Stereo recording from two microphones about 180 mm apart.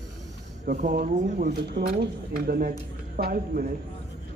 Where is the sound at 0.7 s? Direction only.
50° right (ahead or behind).